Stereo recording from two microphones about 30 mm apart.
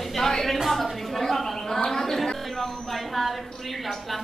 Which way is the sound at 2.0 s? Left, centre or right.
Centre.